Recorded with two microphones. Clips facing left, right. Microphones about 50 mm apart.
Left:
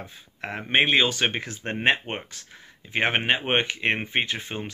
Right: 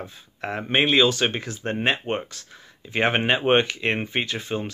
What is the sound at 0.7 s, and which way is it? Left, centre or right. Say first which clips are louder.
Speech: right 2 dB; centre.